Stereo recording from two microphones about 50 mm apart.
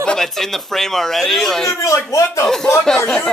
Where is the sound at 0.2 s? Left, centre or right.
Centre.